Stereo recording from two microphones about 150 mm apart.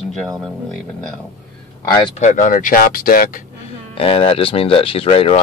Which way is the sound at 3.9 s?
40° left (ahead or behind).